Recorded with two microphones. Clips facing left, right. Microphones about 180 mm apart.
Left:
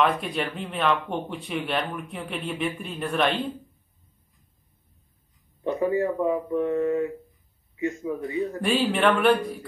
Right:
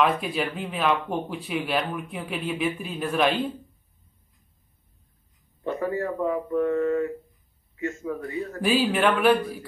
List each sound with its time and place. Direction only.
0.0 s speech: centre (ahead or behind)
5.6 s speech: 15° left (ahead or behind)
8.5 s speech: 5° right (ahead or behind)